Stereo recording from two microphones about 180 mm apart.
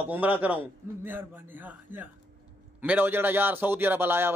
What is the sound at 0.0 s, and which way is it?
Speech, 10° right (ahead or behind).